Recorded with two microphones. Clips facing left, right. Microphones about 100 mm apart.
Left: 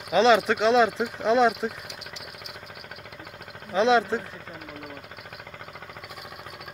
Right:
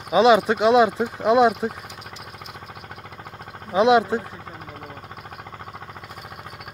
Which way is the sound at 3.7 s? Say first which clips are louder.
Right 4 dB; 15° right (ahead or behind).